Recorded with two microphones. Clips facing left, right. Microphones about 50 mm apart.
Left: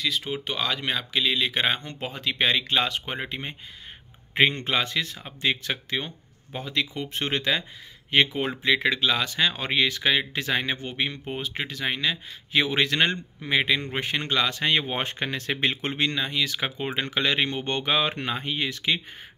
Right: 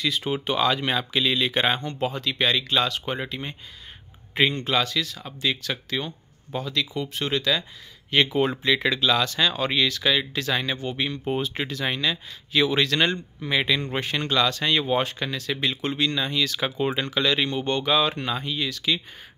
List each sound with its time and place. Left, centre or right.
0.0 s speech: centre
1.8 s speech: centre; by 7.6 s left
8.1 s speech: centre
11.2 s speech: centre; by 16.2 s left
16.2 s speech: centre